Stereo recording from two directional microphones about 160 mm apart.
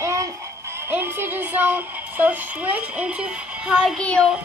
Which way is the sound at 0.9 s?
15° right (ahead or behind).